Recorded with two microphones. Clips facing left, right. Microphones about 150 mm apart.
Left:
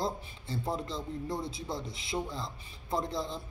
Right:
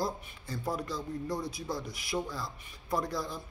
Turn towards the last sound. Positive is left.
turn(degrees=25)  # may be behind; listen again after turning